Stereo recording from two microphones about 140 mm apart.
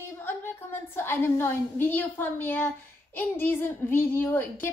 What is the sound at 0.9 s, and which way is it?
A woman's voice, 15° left (ahead or behind).